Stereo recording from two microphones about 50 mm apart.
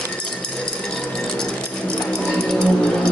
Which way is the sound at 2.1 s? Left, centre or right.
Centre.